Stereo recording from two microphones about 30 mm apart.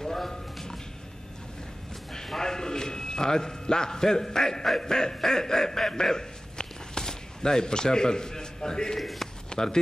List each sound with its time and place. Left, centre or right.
0.0 s a sound: centre
2.2 s a sound: centre
4.7 s quack: centre
5.2 s speech: centre
8.9 s a man's voice: centre
9.5 s speech: left